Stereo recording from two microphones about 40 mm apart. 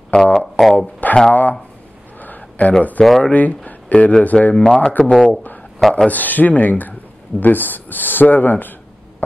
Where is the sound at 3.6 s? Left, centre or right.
Left.